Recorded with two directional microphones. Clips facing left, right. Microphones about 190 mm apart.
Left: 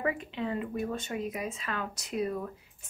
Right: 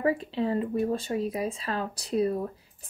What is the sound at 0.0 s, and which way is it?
Speech, 35° right (ahead or behind).